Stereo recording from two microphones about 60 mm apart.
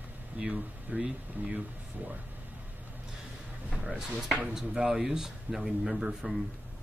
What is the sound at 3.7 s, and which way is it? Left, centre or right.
Speech, right.